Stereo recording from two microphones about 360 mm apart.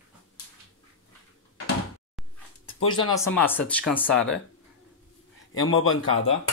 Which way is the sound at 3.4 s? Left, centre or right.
Centre.